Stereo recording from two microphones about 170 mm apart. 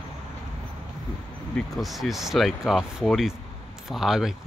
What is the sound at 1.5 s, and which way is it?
Speech, centre (ahead or behind).